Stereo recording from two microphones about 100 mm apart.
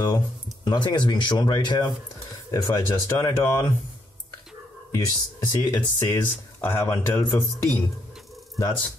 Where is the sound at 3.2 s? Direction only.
35° left (ahead or behind).